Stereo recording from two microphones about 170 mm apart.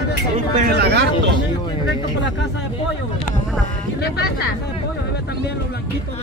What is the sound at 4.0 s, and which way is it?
Speech, 70° left (ahead or behind).